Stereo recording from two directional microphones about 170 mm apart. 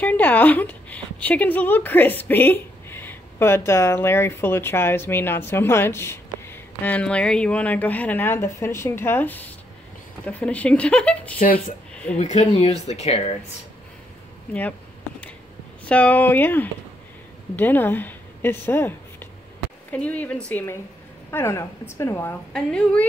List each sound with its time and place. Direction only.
0.0 s speech: 10° left (ahead or behind)
12.2 s speech: 45° left (ahead or behind)
15.9 s a woman's voice: 10° left (ahead or behind)